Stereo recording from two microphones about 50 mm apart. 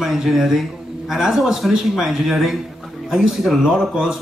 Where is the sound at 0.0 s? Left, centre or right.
Centre.